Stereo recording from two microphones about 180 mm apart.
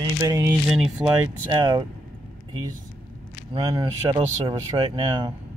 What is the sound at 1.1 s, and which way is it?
Speech, 20° right (ahead or behind).